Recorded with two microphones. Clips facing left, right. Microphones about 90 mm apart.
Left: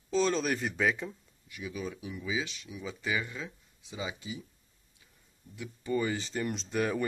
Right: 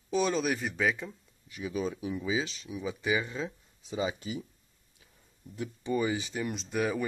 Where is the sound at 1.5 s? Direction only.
25° right (ahead or behind).